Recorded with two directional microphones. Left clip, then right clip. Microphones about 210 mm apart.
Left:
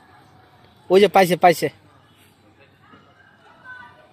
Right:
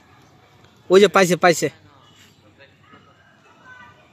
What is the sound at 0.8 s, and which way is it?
Speech, 10° right (ahead or behind).